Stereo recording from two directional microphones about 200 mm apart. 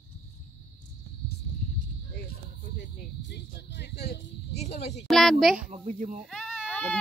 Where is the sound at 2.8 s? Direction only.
55° left (ahead or behind).